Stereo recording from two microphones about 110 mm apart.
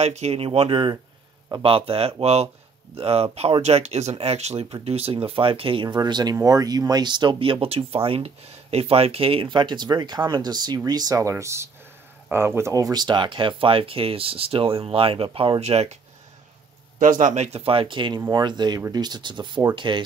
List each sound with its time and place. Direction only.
0.0 s speech: 75° right (ahead or behind); by 5.9 s 50° right (ahead or behind)
5.9 s speech: 40° right (ahead or behind)
15.6 s speech: 75° right (ahead or behind)
17.2 s speech: 90° right; by 20.1 s 45° right (ahead or behind)